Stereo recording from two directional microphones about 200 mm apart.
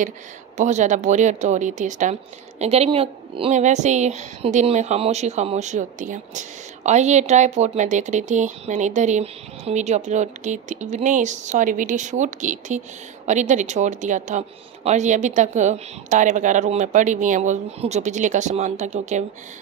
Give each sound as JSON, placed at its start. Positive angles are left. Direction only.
{"t": 0.6, "sound": "a woman's voice", "side_deg": -35}